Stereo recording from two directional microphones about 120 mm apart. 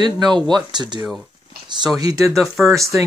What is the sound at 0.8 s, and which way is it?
Speech, 35° right (ahead or behind).